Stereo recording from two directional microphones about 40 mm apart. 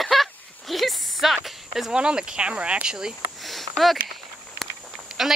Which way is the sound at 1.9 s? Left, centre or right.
Right.